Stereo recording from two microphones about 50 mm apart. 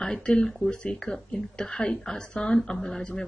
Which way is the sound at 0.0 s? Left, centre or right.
Centre.